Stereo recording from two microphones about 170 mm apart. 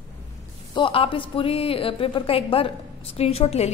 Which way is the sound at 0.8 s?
30° left (ahead or behind).